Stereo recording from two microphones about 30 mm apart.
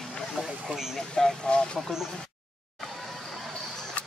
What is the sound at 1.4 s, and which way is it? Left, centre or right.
Speech, left.